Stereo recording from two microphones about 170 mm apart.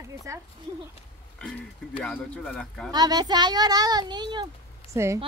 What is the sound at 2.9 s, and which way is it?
A woman's voice, 25° right (ahead or behind).